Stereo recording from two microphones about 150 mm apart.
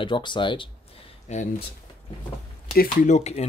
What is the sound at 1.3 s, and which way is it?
Speech, 50° left (ahead or behind).